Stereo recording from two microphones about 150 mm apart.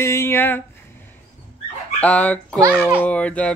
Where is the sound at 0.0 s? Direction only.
15° left (ahead or behind).